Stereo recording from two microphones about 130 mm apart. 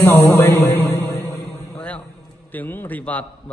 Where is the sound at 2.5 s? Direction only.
15° left (ahead or behind).